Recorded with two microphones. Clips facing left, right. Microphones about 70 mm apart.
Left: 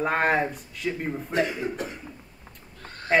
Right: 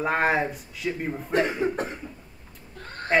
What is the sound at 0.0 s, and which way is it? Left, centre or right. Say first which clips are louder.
Speech: even; centre.